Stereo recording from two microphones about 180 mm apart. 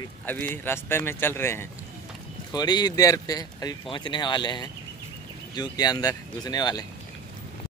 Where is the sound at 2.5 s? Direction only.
25° left (ahead or behind).